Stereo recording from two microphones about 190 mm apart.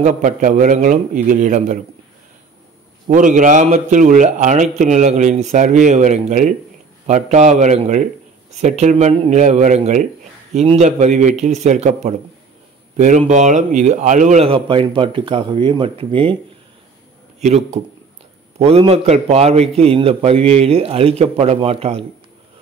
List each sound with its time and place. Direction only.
0.0 s a man's voice: 40° right (ahead or behind)
3.1 s a man's voice: 45° right (ahead or behind)
17.4 s a man's voice: 40° right (ahead or behind)